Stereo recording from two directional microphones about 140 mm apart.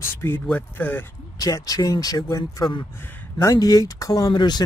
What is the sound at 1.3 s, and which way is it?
Speech, 25° left (ahead or behind).